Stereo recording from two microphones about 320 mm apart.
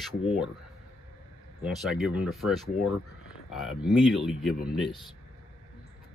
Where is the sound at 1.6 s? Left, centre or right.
Centre.